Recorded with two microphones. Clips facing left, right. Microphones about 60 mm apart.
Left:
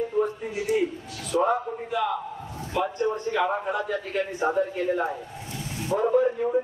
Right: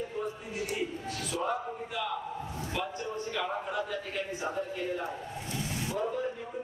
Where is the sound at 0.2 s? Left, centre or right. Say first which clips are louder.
Left 9 dB; left.